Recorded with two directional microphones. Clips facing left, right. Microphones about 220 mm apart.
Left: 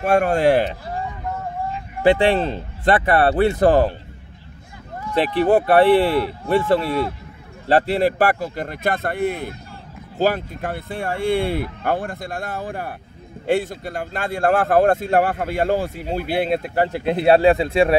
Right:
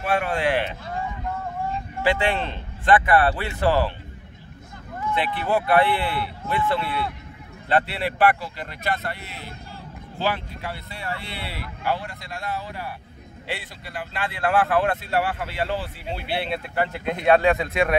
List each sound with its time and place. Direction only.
0.0 s speech: 45° left (ahead or behind)
2.0 s speech: 40° left (ahead or behind)
5.1 s speech: 40° left (ahead or behind)